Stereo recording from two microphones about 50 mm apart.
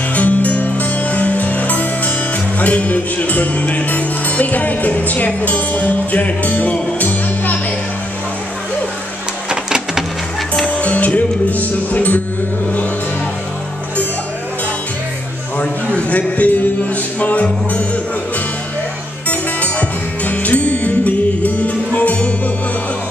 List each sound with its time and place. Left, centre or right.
0.1 s music: left
9.5 s printer: centre
10.6 s music: left
15.6 s a man's voice: left
19.2 s music: left